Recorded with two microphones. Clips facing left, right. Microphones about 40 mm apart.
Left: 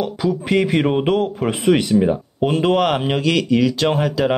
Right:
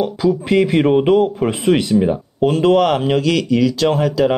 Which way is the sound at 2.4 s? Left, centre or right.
Centre.